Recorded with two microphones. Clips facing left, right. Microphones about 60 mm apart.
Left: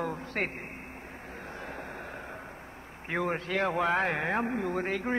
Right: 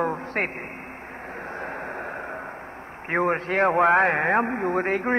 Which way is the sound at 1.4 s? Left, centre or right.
Right.